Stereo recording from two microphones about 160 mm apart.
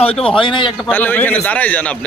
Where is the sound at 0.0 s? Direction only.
35° left (ahead or behind).